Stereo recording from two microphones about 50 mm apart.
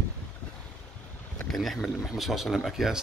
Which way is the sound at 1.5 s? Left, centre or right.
Centre.